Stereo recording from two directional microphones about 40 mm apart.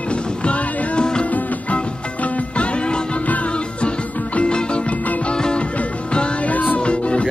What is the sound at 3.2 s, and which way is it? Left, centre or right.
Music, left.